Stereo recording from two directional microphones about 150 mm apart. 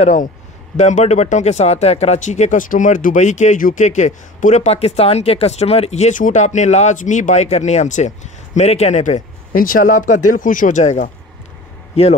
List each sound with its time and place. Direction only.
0.0 s a man's voice: 55° left (ahead or behind)